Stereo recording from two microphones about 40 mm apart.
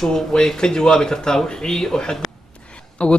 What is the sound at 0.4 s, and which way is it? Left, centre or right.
Speech, centre.